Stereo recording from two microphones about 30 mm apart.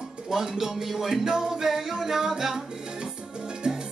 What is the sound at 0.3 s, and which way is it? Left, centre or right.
Music, centre.